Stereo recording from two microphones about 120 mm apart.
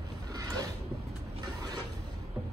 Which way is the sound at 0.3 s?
30° right (ahead or behind).